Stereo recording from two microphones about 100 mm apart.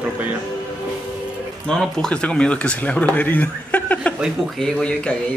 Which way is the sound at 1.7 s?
5° left (ahead or behind).